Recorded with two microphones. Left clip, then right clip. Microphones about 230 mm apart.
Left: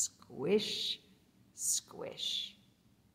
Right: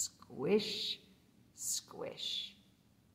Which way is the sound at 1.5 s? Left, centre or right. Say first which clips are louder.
Left 4 dB; centre.